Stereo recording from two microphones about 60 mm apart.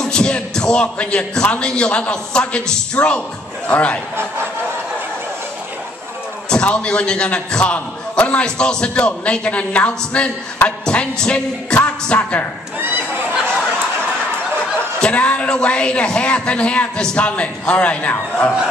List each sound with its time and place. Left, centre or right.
0.1 s a man's voice: centre
6.5 s a man's voice: centre
12.8 s chatter: right
14.8 s a man's voice: centre